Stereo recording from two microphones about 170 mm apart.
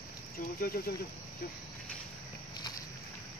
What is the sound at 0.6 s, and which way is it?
Speech, 60° left (ahead or behind).